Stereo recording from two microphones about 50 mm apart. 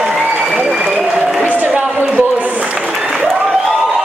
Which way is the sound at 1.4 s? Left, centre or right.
Right.